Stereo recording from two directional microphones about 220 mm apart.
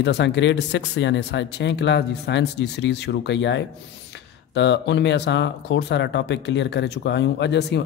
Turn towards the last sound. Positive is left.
turn(degrees=50)  # may be behind; listen again after turning